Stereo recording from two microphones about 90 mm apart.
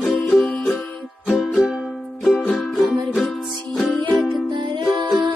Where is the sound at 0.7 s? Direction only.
5° left (ahead or behind).